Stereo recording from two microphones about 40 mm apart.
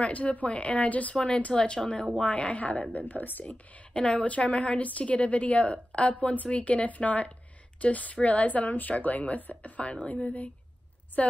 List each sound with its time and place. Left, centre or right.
0.0 s a woman's voice: left
1.1 s speech: left
2.2 s a woman's voice: left
3.1 s speech: left
3.9 s a woman's voice: left